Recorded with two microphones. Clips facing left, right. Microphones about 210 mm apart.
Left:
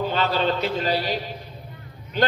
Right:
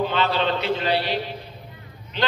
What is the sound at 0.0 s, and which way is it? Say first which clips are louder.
A man's voice: even; 40° left (ahead or behind).